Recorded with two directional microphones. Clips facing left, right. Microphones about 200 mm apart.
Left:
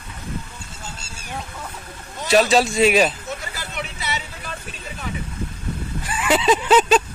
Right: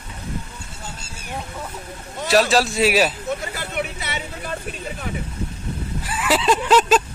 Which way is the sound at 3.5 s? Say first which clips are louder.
Right 5 dB; 55° right (ahead or behind).